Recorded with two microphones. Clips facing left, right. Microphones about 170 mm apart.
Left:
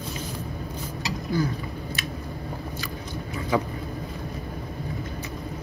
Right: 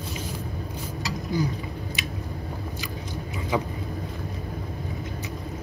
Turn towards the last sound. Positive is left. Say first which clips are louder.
# left 2 dB
turn(degrees=-15)  # may be behind; listen again after turning